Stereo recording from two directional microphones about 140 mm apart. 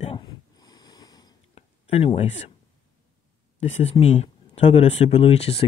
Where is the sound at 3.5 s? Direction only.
55° left (ahead or behind).